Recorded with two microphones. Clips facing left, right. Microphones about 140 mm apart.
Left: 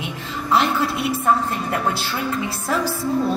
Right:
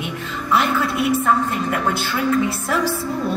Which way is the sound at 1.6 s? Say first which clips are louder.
Right 1 dB; 30° left (ahead or behind).